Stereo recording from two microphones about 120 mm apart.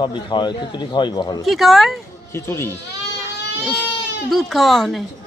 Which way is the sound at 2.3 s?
20° left (ahead or behind).